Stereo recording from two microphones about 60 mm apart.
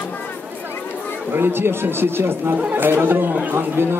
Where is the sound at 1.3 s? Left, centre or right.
Right.